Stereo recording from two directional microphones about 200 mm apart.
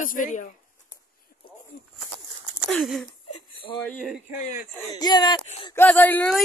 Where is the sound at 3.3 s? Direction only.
25° left (ahead or behind).